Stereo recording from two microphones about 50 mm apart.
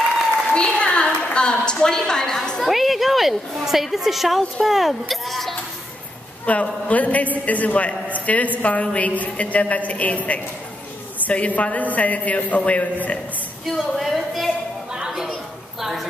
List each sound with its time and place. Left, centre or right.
0.6 s a woman's voice: centre
2.6 s a woman's voice: centre
6.4 s a man's voice: left
13.7 s a woman's voice: centre
14.9 s a sound: centre